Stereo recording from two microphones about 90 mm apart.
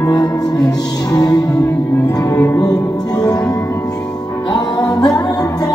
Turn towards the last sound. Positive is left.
turn(degrees=45)  # may be behind; listen again after turning